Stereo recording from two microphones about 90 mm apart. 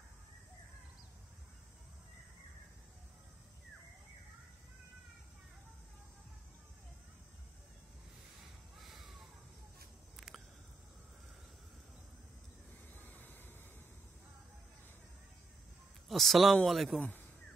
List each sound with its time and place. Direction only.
8.7 s a sound: centre (ahead or behind)
12.9 s vehicle: 20° left (ahead or behind)
16.1 s a man's voice: centre (ahead or behind)